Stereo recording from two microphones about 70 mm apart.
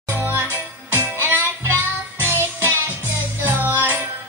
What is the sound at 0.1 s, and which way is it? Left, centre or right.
Music, right.